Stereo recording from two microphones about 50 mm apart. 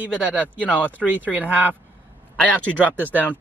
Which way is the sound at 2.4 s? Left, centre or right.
Left.